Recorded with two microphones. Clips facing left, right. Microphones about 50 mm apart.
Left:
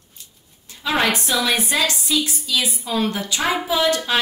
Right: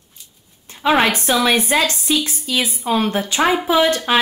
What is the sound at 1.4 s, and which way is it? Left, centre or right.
Speech, right.